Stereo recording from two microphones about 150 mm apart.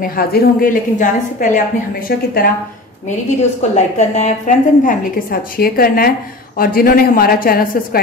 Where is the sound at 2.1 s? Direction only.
90° left.